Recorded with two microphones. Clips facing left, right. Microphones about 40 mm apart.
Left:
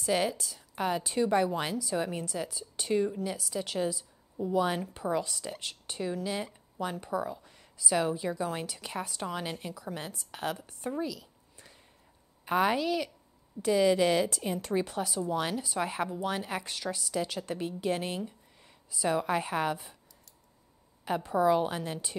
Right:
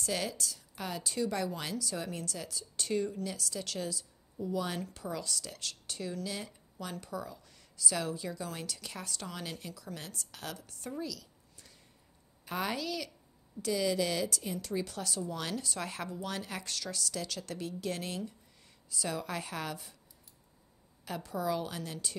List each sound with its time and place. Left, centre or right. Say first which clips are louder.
0.0 s a woman's voice: left 6 dB; left
15.0 s a woman's voice: left 6 dB; centre
21.0 s a woman's voice: left 9 dB; left